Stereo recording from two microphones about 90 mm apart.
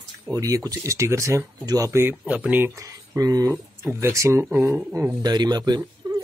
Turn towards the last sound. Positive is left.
turn(degrees=-50)  # may be behind; listen again after turning